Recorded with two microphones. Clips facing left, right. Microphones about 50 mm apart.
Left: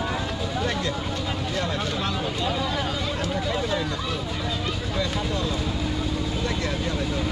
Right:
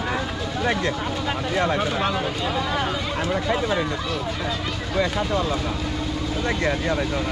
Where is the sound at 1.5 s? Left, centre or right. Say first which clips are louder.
Right 7 dB; right.